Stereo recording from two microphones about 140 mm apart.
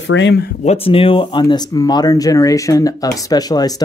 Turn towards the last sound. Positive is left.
turn(degrees=25)  # may be behind; listen again after turning